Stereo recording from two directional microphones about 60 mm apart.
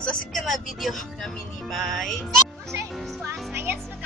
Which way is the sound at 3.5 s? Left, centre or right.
Right.